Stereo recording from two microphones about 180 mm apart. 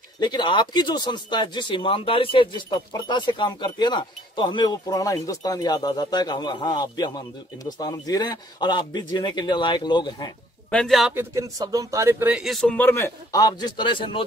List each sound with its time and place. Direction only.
0.2 s speech: 25° left (ahead or behind)
10.7 s speech: 5° left (ahead or behind)
11.3 s speech: 20° right (ahead or behind); by 14.2 s 25° left (ahead or behind)